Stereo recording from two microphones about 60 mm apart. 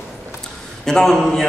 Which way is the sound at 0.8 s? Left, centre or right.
Centre.